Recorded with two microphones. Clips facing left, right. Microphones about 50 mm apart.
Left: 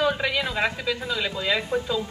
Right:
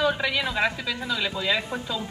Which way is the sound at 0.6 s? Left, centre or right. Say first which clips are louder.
Left 1 dB; left.